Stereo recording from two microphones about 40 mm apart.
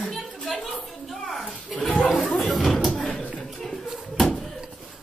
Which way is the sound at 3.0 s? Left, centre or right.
Centre.